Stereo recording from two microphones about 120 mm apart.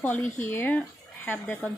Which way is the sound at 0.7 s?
15° left (ahead or behind).